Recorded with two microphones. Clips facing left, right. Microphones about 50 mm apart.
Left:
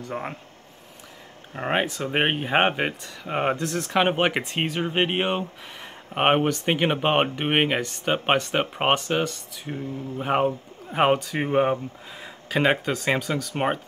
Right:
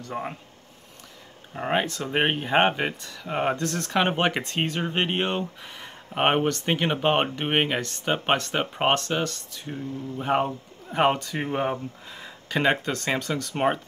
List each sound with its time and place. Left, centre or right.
0.0 s speech: centre
1.5 s speech: centre